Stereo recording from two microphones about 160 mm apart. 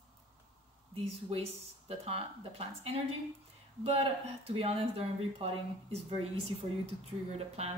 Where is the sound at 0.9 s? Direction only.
35° right (ahead or behind).